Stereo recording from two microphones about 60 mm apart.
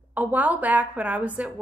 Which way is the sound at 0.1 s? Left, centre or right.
Right.